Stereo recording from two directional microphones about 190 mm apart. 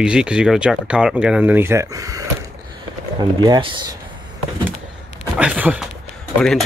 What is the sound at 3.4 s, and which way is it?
Speech, 25° right (ahead or behind).